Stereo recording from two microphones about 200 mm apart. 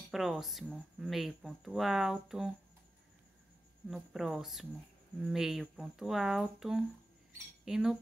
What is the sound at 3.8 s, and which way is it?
Speech, centre (ahead or behind).